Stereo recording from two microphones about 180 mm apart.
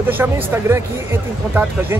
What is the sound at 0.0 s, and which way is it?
Speech, 10° right (ahead or behind).